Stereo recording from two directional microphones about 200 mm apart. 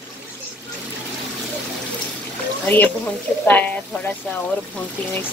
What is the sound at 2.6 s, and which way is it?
Speech, 10° left (ahead or behind).